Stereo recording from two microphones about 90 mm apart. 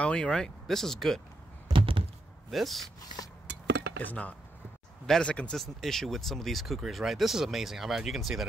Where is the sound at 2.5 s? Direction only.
Centre (ahead or behind).